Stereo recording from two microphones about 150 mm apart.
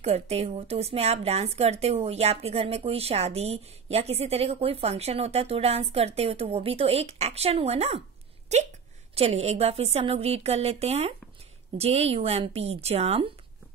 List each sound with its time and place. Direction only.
0.0 s a woman's voice: 45° right (ahead or behind)